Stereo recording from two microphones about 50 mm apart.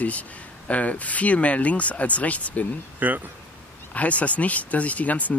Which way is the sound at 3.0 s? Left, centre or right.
Right.